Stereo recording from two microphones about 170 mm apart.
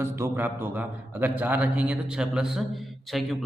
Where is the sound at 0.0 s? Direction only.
15° right (ahead or behind).